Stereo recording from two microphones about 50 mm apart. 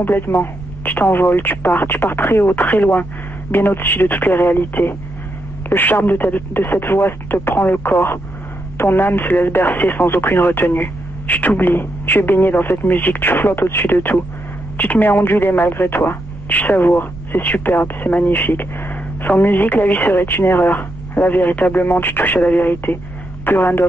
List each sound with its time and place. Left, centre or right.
0.3 s speech: left
0.8 s speech: left
10.0 s speech: left
13.9 s speech: left
15.0 s speech: left
16.4 s speech: left